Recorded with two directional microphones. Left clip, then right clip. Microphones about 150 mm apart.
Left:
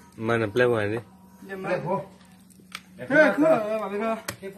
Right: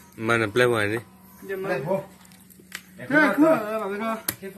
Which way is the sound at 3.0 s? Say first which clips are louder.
Even; 75° left (ahead or behind).